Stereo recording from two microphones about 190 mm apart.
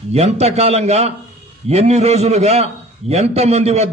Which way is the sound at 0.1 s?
35° right (ahead or behind).